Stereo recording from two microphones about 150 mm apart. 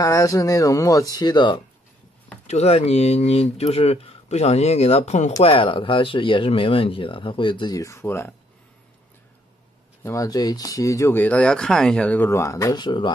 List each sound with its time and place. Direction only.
0.0 s speech: 20° left (ahead or behind)
2.4 s speech: 45° left (ahead or behind)
5.4 s speech: 35° left (ahead or behind); by 8.4 s 15° left (ahead or behind)
10.0 s speech: 20° left (ahead or behind)